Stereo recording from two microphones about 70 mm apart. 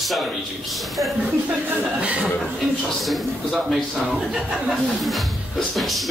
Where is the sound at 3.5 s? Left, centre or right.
Centre.